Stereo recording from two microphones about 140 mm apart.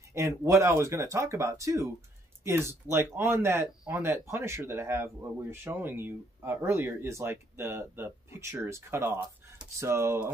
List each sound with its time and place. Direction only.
0.1 s speech: 20° right (ahead or behind)